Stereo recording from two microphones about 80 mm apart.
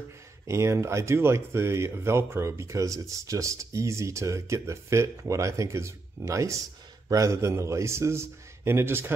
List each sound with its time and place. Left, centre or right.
0.5 s speech: right